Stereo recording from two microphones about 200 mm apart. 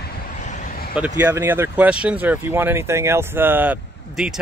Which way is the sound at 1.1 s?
15° right (ahead or behind).